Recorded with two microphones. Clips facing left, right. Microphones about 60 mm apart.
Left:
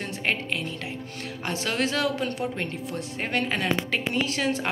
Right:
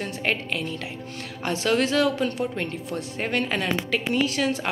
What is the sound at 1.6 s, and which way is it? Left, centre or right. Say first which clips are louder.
Speech: right 5 dB; centre.